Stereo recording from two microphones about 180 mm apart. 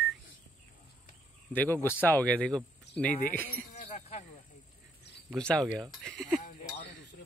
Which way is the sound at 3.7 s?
40° left (ahead or behind).